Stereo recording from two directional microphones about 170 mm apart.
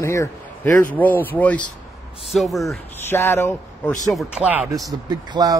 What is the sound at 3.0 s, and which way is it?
Speech, 15° left (ahead or behind).